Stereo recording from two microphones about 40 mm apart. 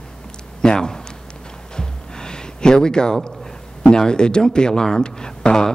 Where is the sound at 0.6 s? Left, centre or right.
Centre.